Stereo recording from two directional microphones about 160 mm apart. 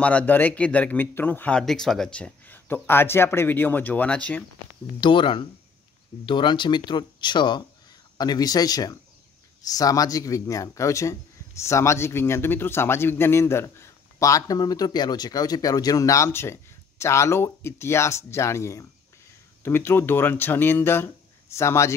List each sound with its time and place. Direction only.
0.0 s a man's voice: 10° left (ahead or behind)
5.0 s a man's voice: 30° left (ahead or behind)